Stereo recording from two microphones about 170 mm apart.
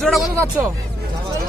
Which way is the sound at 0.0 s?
Centre (ahead or behind).